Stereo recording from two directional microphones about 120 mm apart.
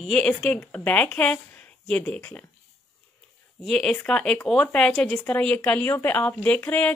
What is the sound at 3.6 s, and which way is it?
Speech, 5° left (ahead or behind).